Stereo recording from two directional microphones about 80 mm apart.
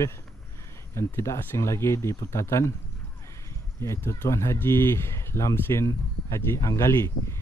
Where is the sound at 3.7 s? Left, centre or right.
Left.